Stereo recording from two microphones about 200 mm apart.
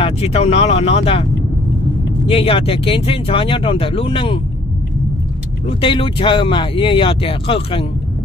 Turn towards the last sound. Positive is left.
turn(degrees=25)  # may be behind; listen again after turning